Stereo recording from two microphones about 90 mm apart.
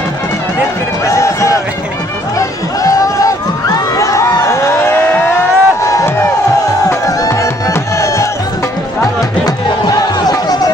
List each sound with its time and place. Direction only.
1.1 s run: 35° left (ahead or behind)
2.3 s crowd: 40° left (ahead or behind)
6.9 s music: 40° left (ahead or behind)
9.8 s music: 45° left (ahead or behind)